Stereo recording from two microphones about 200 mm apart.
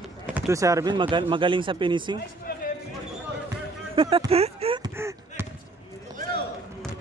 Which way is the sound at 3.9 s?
25° right (ahead or behind).